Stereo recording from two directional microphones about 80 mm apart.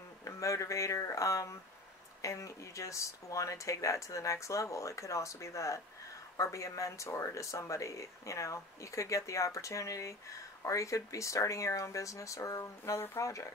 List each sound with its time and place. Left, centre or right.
0.2 s speech: left